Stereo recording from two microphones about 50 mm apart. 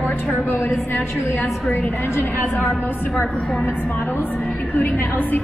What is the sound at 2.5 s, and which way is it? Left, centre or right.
A woman's voice, left.